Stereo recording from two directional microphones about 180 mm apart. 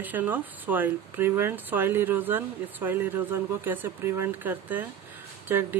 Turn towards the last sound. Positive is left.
turn(degrees=-10)  # may be behind; listen again after turning